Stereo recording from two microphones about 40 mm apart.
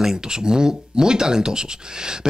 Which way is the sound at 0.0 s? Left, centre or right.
Centre.